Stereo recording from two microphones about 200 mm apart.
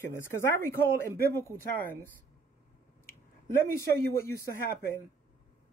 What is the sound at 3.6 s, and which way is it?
Speech, 10° left (ahead or behind).